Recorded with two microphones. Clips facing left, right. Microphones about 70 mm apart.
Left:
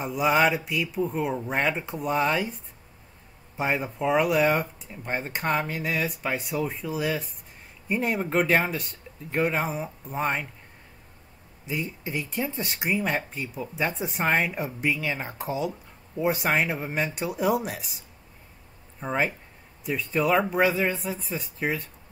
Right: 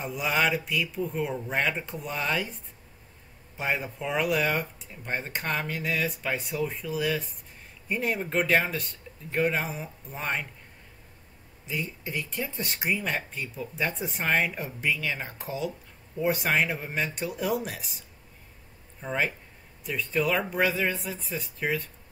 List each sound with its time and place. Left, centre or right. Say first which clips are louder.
0.0 s speech: left 5 dB; centre
3.5 s speech: left 3 dB; centre
11.6 s speech: left 2 dB; centre
19.0 s speech: left 2 dB; centre